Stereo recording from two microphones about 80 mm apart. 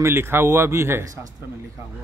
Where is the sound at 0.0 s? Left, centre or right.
Right.